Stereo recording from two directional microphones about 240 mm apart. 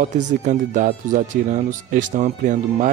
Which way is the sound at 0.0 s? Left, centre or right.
Right.